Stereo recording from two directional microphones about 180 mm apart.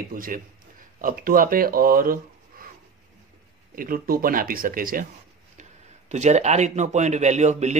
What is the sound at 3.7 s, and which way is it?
Speech, 55° right (ahead or behind).